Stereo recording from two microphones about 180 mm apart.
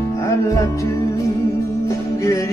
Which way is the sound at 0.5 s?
15° left (ahead or behind).